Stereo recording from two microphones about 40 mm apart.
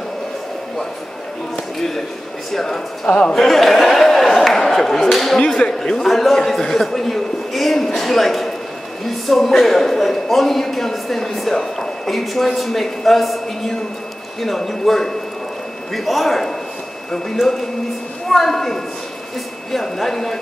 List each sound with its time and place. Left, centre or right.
2.5 s speech: centre
3.1 s a man's voice: left
3.3 s a sound: centre
5.5 s a man's voice: centre
18.3 s speech: centre